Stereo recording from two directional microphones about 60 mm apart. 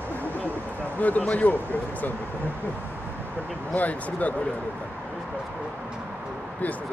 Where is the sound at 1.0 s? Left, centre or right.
Left.